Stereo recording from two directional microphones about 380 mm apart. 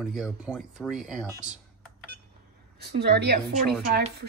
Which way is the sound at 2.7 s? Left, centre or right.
Right.